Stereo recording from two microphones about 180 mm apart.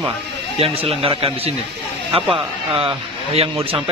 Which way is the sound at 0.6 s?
35° right (ahead or behind).